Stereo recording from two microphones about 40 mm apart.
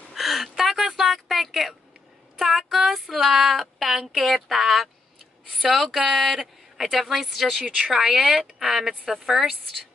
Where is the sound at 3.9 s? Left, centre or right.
Centre.